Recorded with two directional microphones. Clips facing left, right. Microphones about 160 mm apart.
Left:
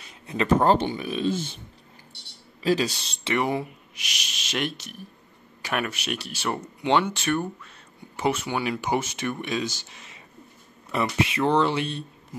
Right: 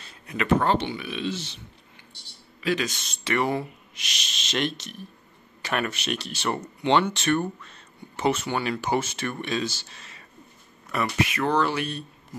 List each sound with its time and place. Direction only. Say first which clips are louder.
0.3 s speech: left 3 dB; 30° left (ahead or behind)
0.8 s speech: left 4 dB; 40° left (ahead or behind)
2.6 s speech: left 3 dB; 35° left (ahead or behind)
3.3 s speech: even; 15° left (ahead or behind)